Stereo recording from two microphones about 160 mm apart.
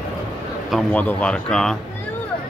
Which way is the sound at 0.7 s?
10° left (ahead or behind).